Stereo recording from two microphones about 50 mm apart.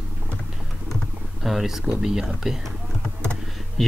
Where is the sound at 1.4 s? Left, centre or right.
Centre.